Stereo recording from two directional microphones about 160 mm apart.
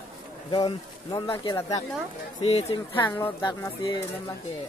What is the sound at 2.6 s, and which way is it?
Speech, 20° left (ahead or behind).